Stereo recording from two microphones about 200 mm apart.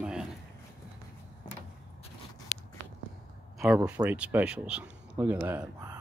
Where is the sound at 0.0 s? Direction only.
5° right (ahead or behind).